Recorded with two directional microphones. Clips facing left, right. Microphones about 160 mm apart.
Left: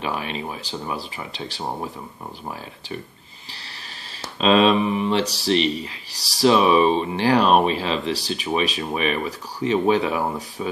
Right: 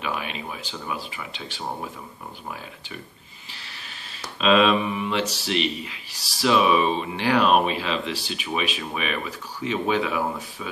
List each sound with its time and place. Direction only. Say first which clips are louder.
0.0 s speech: left 3 dB; 35° left (ahead or behind)
4.4 s speech: left 2 dB; 35° left (ahead or behind)